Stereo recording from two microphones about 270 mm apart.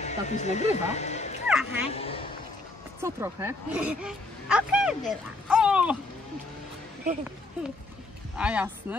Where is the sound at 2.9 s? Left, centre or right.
Centre.